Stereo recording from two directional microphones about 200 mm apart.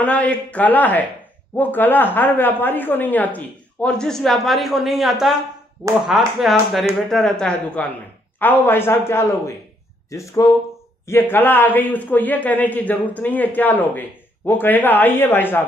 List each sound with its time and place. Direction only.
0.0 s a man's voice: 5° left (ahead or behind)